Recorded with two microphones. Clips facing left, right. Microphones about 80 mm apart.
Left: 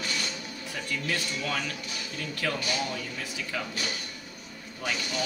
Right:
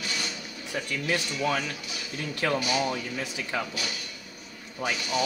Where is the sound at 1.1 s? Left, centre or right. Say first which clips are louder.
Right 6 dB; right.